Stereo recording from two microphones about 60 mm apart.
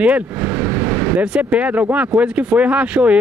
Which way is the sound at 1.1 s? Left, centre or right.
Right.